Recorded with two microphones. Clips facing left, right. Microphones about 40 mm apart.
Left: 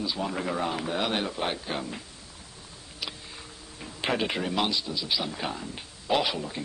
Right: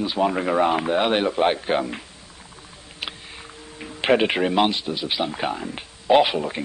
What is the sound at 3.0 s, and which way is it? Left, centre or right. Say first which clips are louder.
Speech: right 4 dB; right.